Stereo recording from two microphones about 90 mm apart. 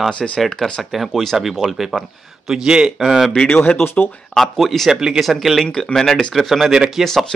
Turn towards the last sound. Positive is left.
turn(degrees=0)  # may be behind; listen again after turning